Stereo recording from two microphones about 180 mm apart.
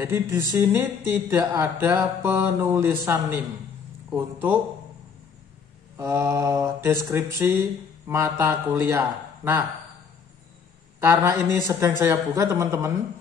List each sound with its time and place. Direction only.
0.0 s speech: 15° right (ahead or behind)
5.9 s speech: 15° right (ahead or behind)
11.0 s speech: 15° right (ahead or behind)